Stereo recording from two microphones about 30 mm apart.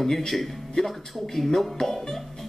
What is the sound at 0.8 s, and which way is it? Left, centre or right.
Speech, centre.